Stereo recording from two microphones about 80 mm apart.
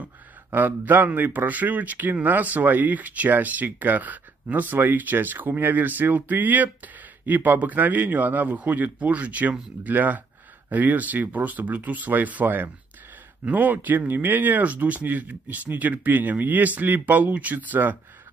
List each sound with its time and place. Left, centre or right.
0.0 s speech: right